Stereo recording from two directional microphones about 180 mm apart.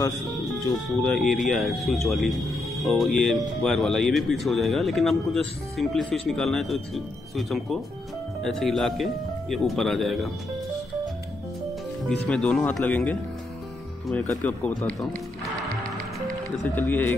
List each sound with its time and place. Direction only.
0.8 s speech: centre (ahead or behind)
12.3 s speech: 5° left (ahead or behind)
14.3 s speech: 10° left (ahead or behind)
16.6 s speech: 10° left (ahead or behind)